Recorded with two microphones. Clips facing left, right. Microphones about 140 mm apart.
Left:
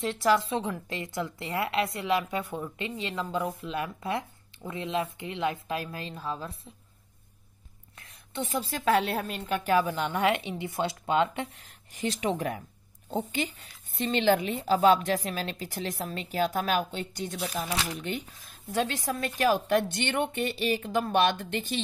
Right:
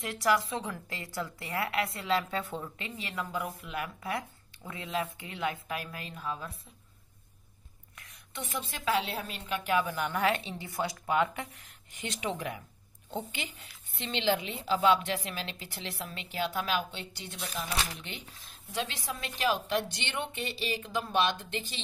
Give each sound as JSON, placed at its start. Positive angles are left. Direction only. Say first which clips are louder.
{"t": 0.0, "sound": "a woman's voice", "louder": "left 4 dB", "side_deg": 25}
{"t": 3.0, "sound": "a woman's voice", "louder": "left 4 dB", "side_deg": 25}
{"t": 8.0, "sound": "a sound", "louder": "left 7 dB", "side_deg": 30}
{"t": 8.8, "sound": "a woman's voice", "louder": "left 5 dB", "side_deg": 50}
{"t": 10.0, "sound": "a woman's voice", "louder": "left 3 dB", "side_deg": 20}